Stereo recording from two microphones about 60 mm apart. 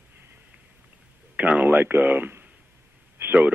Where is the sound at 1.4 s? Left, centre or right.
Right.